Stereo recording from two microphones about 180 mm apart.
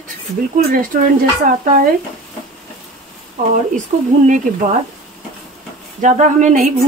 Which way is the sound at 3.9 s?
45° right (ahead or behind).